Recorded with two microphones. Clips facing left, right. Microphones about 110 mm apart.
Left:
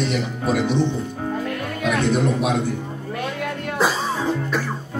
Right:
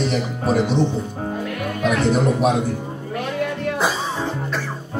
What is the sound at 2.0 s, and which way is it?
Speech, 40° right (ahead or behind).